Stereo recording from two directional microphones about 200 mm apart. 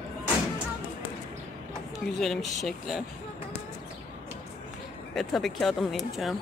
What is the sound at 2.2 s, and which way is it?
Speech, centre (ahead or behind).